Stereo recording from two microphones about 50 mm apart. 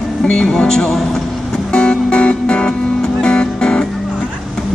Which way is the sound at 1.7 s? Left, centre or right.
Centre.